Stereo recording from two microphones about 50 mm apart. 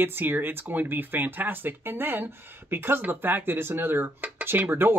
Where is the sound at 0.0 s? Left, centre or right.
Right.